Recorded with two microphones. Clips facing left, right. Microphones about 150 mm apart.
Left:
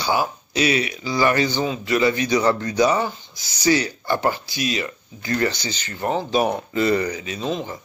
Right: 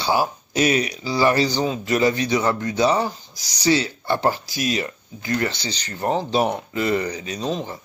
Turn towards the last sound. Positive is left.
turn(degrees=-35)  # may be behind; listen again after turning